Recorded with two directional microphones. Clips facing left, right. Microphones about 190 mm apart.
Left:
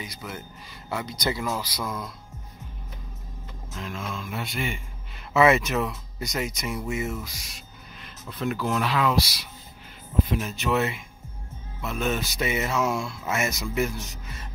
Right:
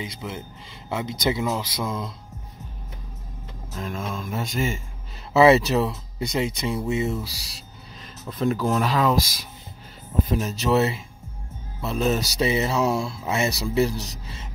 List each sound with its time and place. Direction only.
0.0 s speech: 25° right (ahead or behind)
3.7 s speech: 45° right (ahead or behind)
10.2 s speech: 35° right (ahead or behind)